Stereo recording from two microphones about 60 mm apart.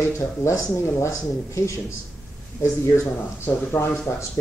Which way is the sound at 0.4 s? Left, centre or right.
Left.